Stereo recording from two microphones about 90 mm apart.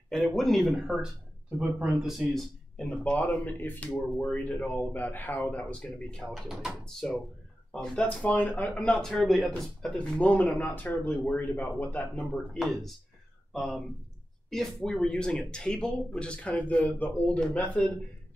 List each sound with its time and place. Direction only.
0.1 s a man's voice: 5° left (ahead or behind)
6.3 s a man's voice: 5° right (ahead or behind); by 8.7 s 20° left (ahead or behind)
8.7 s a man's voice: 10° left (ahead or behind)
9.9 s speech: 15° left (ahead or behind)
12.5 s a man's voice: centre (ahead or behind); by 17.9 s 15° left (ahead or behind)